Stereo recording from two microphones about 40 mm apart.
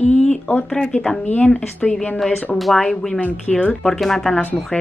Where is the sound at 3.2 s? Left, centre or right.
Left.